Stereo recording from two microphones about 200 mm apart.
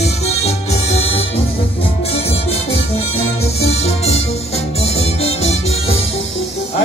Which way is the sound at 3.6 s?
30° left (ahead or behind).